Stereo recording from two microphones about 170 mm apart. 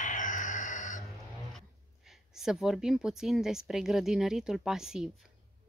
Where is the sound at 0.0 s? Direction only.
50° left (ahead or behind).